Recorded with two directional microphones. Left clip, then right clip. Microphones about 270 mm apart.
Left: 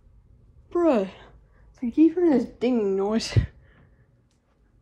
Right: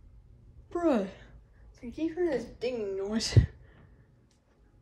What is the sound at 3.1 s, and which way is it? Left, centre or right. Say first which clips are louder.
Speech: left 5 dB; centre.